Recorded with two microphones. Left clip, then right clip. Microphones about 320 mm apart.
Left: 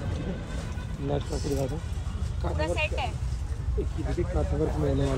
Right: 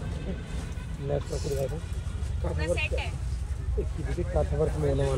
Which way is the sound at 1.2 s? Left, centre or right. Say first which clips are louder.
Left 1 dB; centre.